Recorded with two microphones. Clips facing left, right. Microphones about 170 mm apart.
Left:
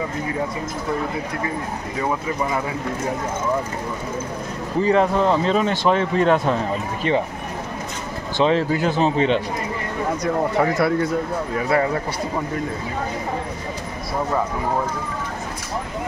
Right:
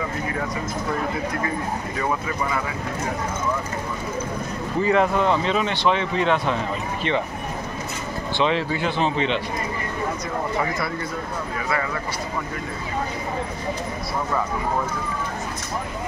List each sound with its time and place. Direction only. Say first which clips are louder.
4.8 s speech: left 2 dB; 35° left (ahead or behind)
8.4 s speech: left 4 dB; 40° left (ahead or behind)
10.2 s speech: left 9 dB; 70° left (ahead or behind)
11.7 s speech: left 7 dB; 40° left (ahead or behind)